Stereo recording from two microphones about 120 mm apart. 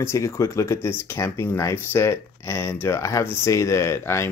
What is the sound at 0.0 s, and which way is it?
Speech, 25° left (ahead or behind).